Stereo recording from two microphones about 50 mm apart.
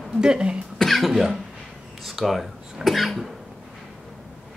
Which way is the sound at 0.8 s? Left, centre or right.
Centre.